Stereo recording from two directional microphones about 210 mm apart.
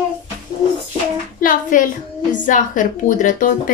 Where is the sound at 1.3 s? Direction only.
40° left (ahead or behind).